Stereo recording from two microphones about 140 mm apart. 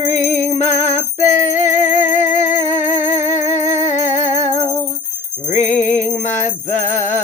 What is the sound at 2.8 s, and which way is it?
Music, 55° left (ahead or behind).